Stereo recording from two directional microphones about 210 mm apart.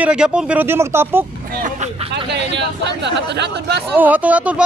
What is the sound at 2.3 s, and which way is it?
Speech, 55° right (ahead or behind).